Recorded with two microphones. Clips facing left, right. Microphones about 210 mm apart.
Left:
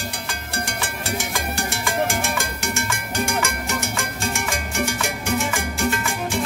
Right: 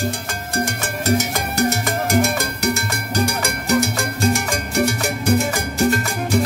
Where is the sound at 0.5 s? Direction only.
45° right (ahead or behind).